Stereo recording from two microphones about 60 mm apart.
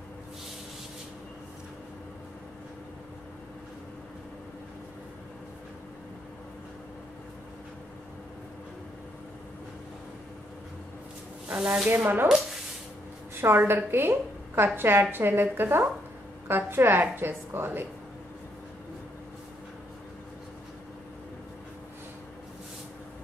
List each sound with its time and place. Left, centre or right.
11.4 s speech: right
11.9 s a woman's voice: right
13.4 s a woman's voice: right